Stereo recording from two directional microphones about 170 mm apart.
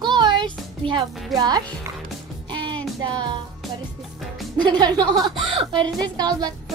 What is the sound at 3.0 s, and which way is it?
Speech, 30° right (ahead or behind).